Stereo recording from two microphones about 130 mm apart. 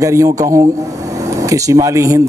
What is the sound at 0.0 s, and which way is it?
Speech, 25° right (ahead or behind).